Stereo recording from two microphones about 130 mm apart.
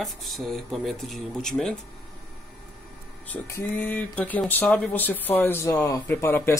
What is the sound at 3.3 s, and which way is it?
Speech, 15° left (ahead or behind).